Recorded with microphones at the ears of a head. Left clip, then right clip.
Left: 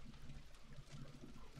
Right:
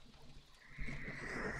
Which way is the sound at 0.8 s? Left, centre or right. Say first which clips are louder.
Right 16 dB; right.